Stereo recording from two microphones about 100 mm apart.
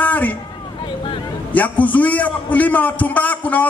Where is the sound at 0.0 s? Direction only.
15° left (ahead or behind).